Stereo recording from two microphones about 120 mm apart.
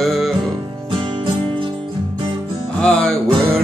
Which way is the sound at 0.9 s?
45° right (ahead or behind).